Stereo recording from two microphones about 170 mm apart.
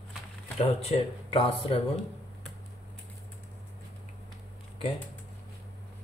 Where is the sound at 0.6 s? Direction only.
35° left (ahead or behind).